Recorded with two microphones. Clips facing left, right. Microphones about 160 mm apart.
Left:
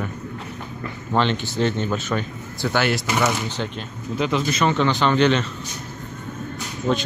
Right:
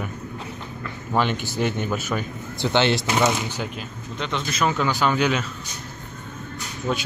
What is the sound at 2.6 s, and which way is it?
Speech, 25° right (ahead or behind).